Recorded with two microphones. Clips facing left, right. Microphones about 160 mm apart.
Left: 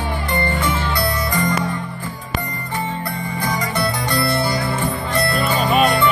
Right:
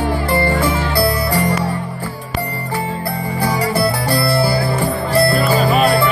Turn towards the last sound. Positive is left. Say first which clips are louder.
# right 2 dB
turn(degrees=-35)  # may be behind; listen again after turning